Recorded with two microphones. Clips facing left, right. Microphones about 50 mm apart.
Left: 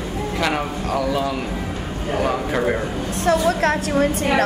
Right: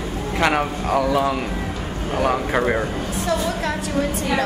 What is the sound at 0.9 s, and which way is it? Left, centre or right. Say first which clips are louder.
Speech: right 3 dB; right.